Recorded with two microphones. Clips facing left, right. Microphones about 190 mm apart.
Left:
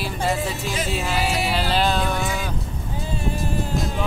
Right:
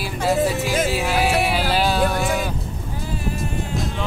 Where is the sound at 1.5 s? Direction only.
10° right (ahead or behind).